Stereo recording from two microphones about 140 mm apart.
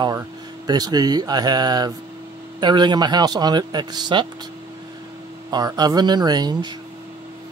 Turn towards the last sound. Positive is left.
turn(degrees=-30)  # may be behind; listen again after turning